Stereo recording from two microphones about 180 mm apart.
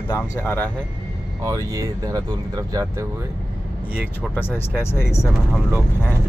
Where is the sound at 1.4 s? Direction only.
20° right (ahead or behind).